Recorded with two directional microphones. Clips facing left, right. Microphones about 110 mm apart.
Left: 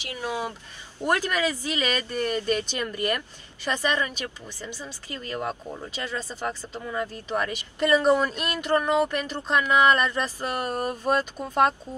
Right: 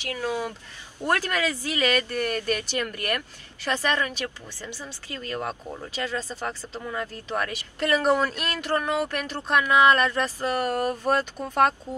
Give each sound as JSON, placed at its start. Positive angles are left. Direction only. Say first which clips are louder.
{"t": 0.0, "sound": "speech", "louder": "right 2 dB", "side_deg": 15}